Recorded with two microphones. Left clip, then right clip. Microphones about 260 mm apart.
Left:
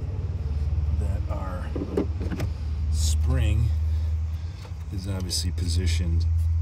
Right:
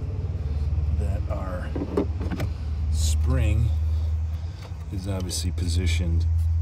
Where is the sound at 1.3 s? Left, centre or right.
Centre.